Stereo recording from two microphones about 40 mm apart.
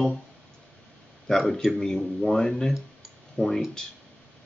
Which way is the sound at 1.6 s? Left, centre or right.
Centre.